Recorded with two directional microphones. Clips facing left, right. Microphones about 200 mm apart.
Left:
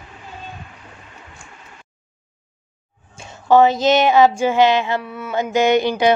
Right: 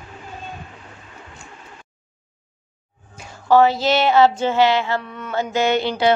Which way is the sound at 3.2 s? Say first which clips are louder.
Left 2 dB; 20° left (ahead or behind).